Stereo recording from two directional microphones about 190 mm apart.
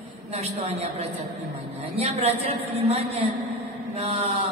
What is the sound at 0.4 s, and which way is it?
Speech, 35° right (ahead or behind).